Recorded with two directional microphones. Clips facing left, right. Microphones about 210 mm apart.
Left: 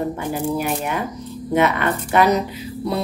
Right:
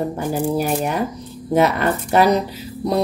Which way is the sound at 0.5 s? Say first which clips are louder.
Right 3 dB; 35° right (ahead or behind).